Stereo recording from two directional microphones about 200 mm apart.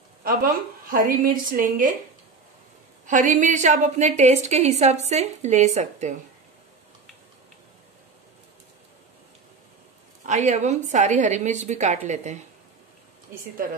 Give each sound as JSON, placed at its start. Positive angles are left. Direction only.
{"t": 0.8, "sound": "a woman's voice", "side_deg": -45}
{"t": 3.1, "sound": "a woman's voice", "side_deg": -40}
{"t": 10.2, "sound": "a woman's voice", "side_deg": -35}